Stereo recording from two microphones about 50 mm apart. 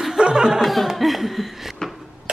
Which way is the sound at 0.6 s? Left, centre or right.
Centre.